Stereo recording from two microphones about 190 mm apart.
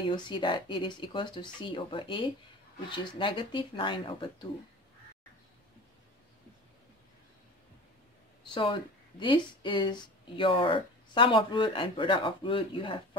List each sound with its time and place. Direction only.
0.0 s speech: 25° left (ahead or behind)
8.5 s speech: 25° left (ahead or behind)